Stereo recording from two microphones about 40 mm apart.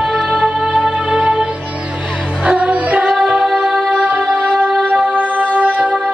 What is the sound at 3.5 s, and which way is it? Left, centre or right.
Music, centre.